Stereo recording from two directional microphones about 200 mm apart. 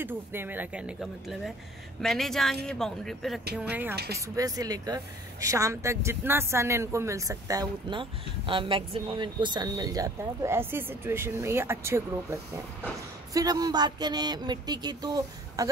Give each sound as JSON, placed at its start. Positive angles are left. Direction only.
{"t": 0.0, "sound": "speech", "side_deg": -10}
{"t": 2.0, "sound": "speech", "side_deg": 0}
{"t": 3.9, "sound": "speech", "side_deg": -50}
{"t": 4.4, "sound": "speech", "side_deg": -20}
{"t": 13.3, "sound": "a sound", "side_deg": -20}